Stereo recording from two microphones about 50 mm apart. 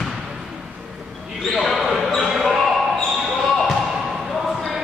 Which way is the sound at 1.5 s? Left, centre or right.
Centre.